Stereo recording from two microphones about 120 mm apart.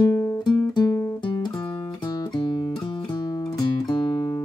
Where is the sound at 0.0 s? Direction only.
25° left (ahead or behind).